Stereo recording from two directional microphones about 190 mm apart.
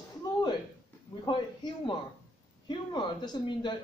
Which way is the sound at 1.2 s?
25° left (ahead or behind).